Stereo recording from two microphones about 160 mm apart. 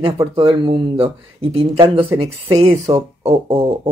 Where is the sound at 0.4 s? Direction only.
30° right (ahead or behind).